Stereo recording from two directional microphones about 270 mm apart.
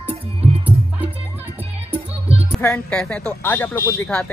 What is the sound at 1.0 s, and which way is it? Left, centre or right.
Music, centre.